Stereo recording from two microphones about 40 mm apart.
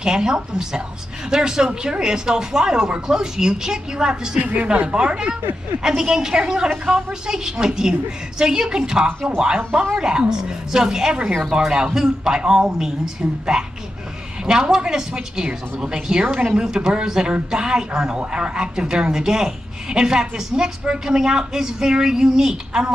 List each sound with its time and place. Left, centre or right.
0.0 s speech: centre
4.4 s speech: right
4.8 s speech: right